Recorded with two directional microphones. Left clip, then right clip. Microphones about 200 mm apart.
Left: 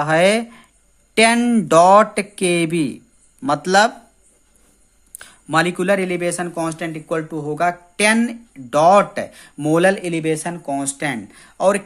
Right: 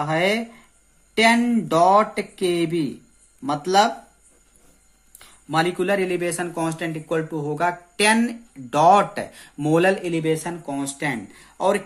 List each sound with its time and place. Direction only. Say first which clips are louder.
0.0 s speech: left 6 dB; 45° left (ahead or behind)
5.5 s speech: left 4 dB; 40° left (ahead or behind)